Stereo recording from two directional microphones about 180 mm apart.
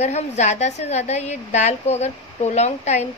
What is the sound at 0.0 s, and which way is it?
A woman's voice, 40° left (ahead or behind).